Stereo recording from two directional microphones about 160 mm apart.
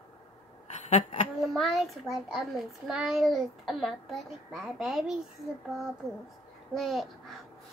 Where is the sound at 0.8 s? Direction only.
45° left (ahead or behind).